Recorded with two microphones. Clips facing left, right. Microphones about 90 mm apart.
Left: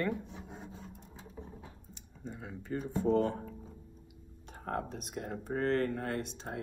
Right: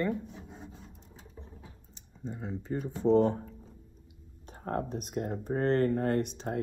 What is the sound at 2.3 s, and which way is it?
Speech, 25° right (ahead or behind).